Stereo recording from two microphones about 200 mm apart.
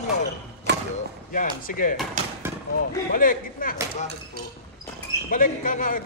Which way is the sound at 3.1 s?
45° left (ahead or behind).